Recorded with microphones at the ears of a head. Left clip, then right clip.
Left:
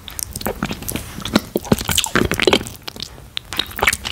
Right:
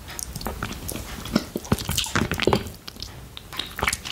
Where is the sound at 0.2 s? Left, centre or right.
Left.